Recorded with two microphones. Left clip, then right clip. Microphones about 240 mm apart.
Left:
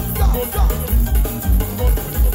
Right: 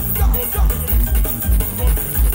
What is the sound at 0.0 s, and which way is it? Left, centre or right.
Music, right.